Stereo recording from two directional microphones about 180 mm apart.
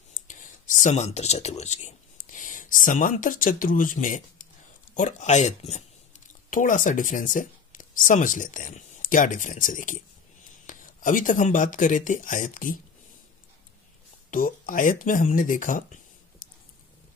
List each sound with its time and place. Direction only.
0.1 s speech: 45° left (ahead or behind)
14.3 s speech: 50° left (ahead or behind)